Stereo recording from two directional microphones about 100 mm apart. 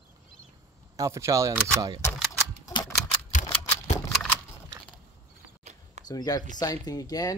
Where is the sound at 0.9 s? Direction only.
30° right (ahead or behind).